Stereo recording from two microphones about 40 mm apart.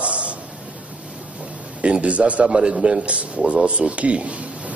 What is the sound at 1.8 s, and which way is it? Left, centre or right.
A man's voice, right.